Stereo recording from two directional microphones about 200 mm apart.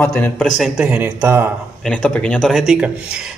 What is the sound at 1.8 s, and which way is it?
A man's voice, 5° left (ahead or behind).